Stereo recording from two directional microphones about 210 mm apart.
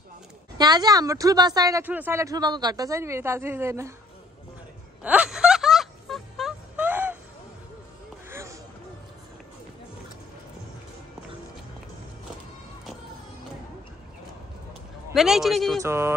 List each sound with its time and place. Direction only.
0.6 s a woman's voice: 20° right (ahead or behind)
5.0 s music: 5° right (ahead or behind)
8.3 s a sound: 15° right (ahead or behind)
15.1 s a man's voice: centre (ahead or behind)
15.8 s a woman's voice: 10° right (ahead or behind)